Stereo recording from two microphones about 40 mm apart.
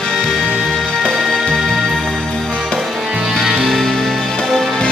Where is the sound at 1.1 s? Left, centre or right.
Centre.